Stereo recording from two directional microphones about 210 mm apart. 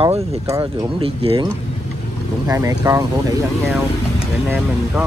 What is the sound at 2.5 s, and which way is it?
Speech, 15° right (ahead or behind).